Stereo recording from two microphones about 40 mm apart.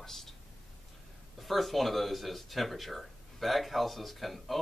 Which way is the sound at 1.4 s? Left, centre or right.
Centre.